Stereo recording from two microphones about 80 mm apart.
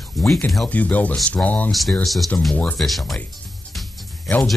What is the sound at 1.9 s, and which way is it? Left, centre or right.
Speech, centre.